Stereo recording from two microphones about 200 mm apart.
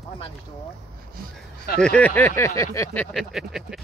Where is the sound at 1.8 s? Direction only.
5° left (ahead or behind).